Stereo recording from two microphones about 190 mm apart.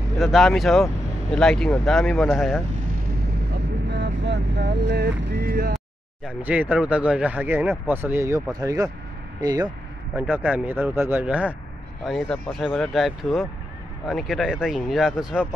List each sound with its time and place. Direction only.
0.2 s speech: centre (ahead or behind)
3.5 s vehicle: 65° right (ahead or behind)
6.2 s speech: 5° right (ahead or behind)
10.3 s speech: 10° right (ahead or behind)